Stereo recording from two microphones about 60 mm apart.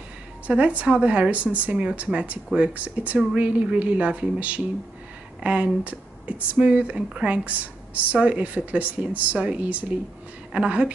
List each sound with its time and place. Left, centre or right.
0.5 s speech: right